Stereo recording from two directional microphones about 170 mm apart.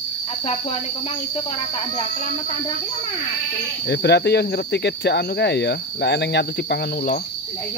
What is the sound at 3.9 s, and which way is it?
Speech, 75° left (ahead or behind).